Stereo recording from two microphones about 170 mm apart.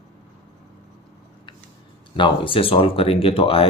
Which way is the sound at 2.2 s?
30° left (ahead or behind).